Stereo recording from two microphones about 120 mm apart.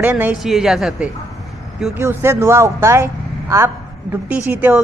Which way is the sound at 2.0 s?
20° right (ahead or behind).